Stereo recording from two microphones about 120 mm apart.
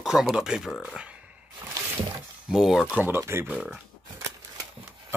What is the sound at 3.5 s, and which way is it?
Speech, 10° right (ahead or behind).